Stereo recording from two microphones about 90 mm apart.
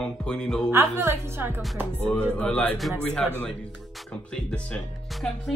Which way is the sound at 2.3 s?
10° left (ahead or behind).